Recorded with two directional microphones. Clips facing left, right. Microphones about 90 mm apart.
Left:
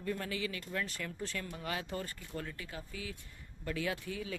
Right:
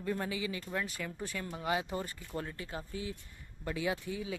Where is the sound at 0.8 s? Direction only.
10° right (ahead or behind); by 3.1 s 30° right (ahead or behind).